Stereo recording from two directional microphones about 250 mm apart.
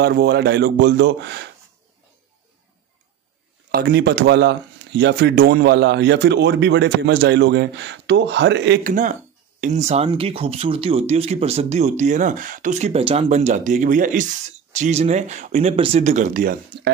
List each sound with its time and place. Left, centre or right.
0.0 s speech: right
3.7 s speech: right
8.9 s speech: right